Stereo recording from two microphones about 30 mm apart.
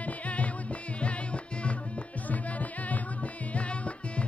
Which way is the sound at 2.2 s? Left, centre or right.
Left.